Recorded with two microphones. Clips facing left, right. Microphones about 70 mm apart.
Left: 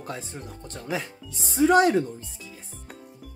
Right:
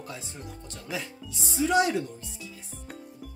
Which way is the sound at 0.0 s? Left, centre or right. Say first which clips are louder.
Left 4 dB; left.